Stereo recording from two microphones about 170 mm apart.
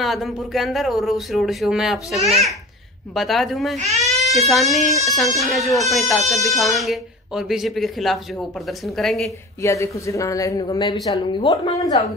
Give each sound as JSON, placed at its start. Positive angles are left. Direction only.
{"t": 0.0, "sound": "speech", "side_deg": 0}
{"t": 3.7, "sound": "speech", "side_deg": -40}
{"t": 4.2, "sound": "speech", "side_deg": 0}
{"t": 9.6, "sound": "a man's voice", "side_deg": 20}